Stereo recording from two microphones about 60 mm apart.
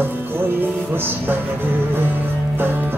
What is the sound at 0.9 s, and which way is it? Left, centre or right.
Music, right.